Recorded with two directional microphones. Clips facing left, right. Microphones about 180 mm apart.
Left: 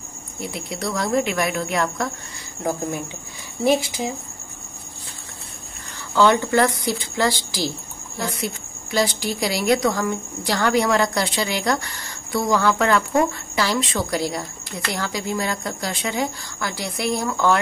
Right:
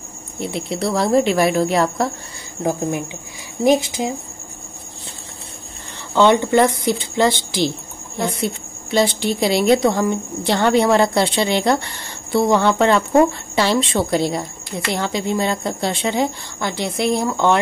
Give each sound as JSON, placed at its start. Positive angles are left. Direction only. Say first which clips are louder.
{"t": 0.4, "sound": "speech", "louder": "right 6 dB", "side_deg": -25}
{"t": 3.6, "sound": "a woman's voice", "louder": "right 4 dB", "side_deg": -20}
{"t": 6.1, "sound": "a woman's voice", "louder": "right 3 dB", "side_deg": -20}